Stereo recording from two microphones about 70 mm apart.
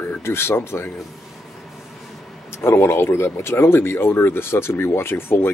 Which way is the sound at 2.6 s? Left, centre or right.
Left.